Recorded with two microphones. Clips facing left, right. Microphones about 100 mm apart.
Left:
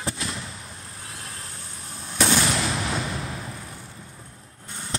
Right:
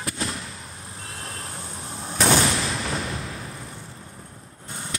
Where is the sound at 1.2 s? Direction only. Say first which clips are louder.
Right 5 dB; 30° right (ahead or behind).